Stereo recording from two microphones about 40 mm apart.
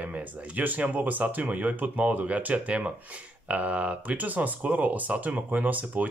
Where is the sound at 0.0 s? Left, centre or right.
Right.